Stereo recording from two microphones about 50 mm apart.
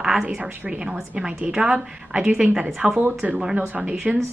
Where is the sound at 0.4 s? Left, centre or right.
Centre.